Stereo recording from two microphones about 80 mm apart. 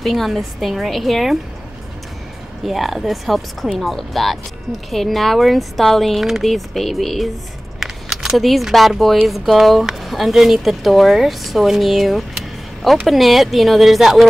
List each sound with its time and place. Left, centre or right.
0.0 s speech: centre
2.6 s speech: centre